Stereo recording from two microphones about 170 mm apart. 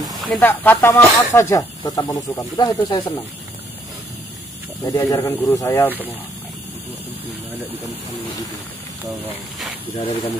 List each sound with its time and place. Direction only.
0.0 s snake: centre (ahead or behind)
0.4 s speech: 10° left (ahead or behind)
4.8 s speech: 20° left (ahead or behind)